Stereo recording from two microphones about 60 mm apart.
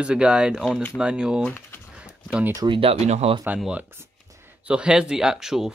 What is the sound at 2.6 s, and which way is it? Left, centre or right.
Speech, right.